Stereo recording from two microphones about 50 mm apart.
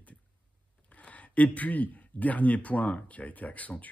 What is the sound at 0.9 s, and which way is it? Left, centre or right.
Speech, left.